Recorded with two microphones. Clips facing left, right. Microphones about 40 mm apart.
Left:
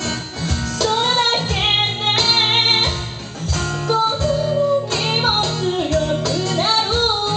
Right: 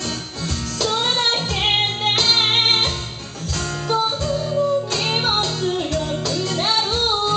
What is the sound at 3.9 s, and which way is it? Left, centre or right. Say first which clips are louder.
Music: left 3 dB; centre.